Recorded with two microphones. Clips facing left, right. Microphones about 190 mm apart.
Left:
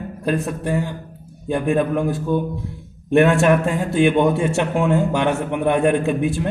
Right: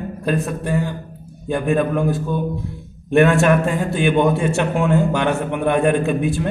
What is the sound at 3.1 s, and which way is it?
A man's voice, 20° left (ahead or behind).